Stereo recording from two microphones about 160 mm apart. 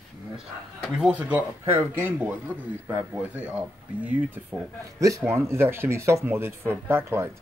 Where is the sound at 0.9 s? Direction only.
5° right (ahead or behind).